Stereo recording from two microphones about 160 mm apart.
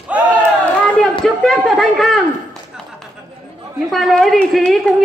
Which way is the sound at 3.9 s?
Centre (ahead or behind).